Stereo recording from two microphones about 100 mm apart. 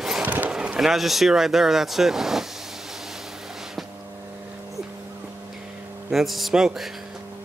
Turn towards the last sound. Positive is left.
turn(degrees=-5)  # may be behind; listen again after turning